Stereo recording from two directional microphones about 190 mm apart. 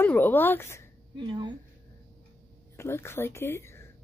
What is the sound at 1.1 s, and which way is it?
Speech, 25° right (ahead or behind).